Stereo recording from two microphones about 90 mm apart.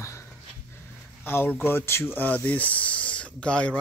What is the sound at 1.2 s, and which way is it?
Speech, 25° left (ahead or behind).